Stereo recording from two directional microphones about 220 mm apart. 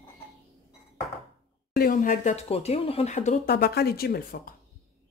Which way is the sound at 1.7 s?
40° left (ahead or behind).